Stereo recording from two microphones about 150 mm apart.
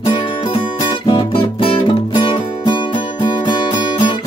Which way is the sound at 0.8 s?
30° left (ahead or behind).